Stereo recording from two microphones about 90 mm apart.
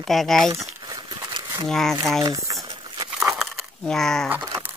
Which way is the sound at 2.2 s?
40° right (ahead or behind).